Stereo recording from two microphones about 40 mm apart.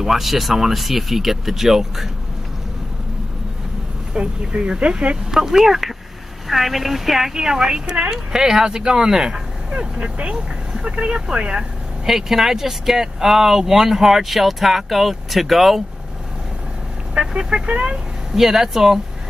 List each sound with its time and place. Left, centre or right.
0.0 s speech: centre
4.1 s speech: right; by 7.3 s centre
7.3 s speech: centre
9.9 s speech: right
10.3 s speech: centre
12.1 s speech: centre
17.1 s speech: centre
18.3 s speech: centre